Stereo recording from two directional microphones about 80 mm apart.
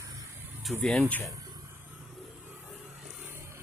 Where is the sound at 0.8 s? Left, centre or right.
Centre.